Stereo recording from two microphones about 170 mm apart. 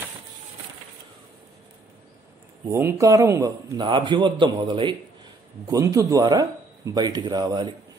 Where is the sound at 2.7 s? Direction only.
15° right (ahead or behind).